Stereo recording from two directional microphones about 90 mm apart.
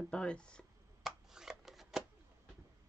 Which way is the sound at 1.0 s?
5° right (ahead or behind).